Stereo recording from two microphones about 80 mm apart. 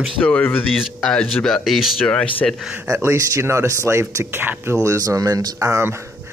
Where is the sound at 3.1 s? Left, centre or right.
Right.